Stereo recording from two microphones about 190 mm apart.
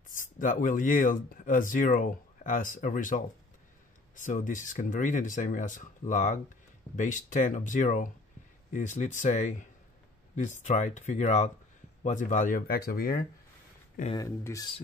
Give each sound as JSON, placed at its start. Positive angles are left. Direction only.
{"t": 0.1, "sound": "speech", "side_deg": 45}
{"t": 14.1, "sound": "speech", "side_deg": 15}